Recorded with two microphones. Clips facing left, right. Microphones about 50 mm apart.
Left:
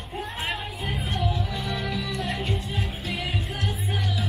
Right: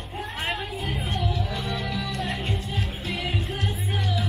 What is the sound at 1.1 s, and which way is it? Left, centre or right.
Music, centre.